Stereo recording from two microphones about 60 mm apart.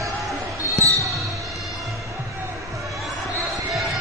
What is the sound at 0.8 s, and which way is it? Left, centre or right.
Basketball bounce, right.